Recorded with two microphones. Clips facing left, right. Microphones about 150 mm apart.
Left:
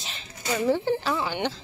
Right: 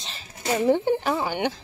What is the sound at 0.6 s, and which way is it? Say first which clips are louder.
Speech: right 3 dB; 20° right (ahead or behind).